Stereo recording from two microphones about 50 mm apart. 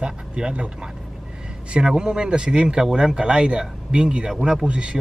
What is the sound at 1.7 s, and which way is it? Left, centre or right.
Speech, centre.